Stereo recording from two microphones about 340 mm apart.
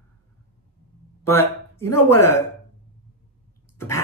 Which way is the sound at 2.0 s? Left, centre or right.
Left.